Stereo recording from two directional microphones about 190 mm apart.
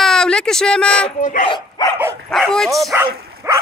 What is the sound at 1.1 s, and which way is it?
Speech, 45° left (ahead or behind).